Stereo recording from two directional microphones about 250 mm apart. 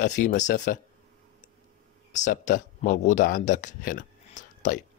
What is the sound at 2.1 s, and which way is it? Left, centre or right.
Speech, left.